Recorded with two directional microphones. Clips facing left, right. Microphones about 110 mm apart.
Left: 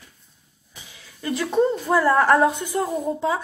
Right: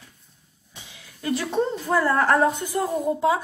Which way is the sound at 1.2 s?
Centre (ahead or behind).